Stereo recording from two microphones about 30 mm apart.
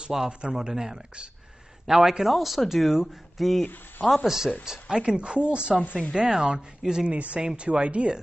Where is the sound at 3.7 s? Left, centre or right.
Left.